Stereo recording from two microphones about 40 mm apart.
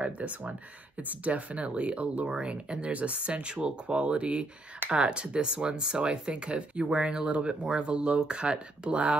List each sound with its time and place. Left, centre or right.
0.0 s speech: right